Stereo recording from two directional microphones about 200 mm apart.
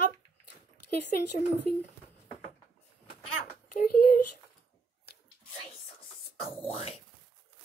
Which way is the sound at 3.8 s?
50° left (ahead or behind).